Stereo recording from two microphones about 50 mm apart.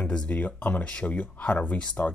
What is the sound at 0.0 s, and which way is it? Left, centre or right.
Speech, left.